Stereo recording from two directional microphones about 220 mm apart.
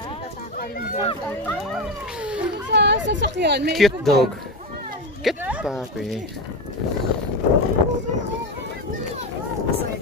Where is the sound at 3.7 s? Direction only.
Centre (ahead or behind).